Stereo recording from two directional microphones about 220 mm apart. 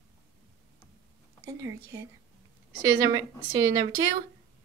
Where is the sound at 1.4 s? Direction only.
15° right (ahead or behind).